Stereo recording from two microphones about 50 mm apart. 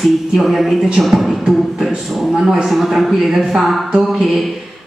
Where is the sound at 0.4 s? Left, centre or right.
Centre.